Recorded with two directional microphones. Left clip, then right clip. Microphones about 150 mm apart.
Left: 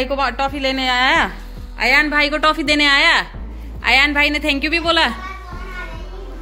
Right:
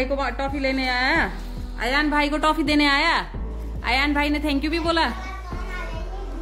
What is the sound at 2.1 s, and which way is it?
A woman's voice, 15° right (ahead or behind).